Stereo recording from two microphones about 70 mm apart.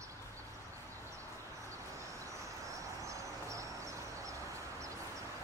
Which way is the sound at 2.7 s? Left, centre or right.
Right.